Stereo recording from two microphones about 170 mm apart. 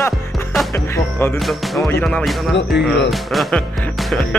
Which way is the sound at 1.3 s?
Centre (ahead or behind).